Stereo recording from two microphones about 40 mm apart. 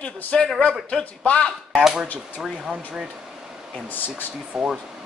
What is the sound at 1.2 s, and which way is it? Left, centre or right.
Speech, left.